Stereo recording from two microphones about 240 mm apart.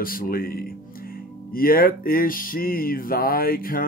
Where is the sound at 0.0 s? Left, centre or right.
Left.